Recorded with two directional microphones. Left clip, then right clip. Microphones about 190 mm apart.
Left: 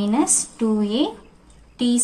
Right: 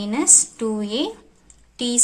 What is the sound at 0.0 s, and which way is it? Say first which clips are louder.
A woman's voice: right 2 dB; 20° right (ahead or behind).